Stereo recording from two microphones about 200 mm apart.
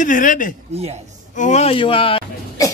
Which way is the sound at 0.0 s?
40° left (ahead or behind).